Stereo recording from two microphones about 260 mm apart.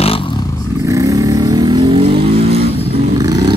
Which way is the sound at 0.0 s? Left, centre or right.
Left.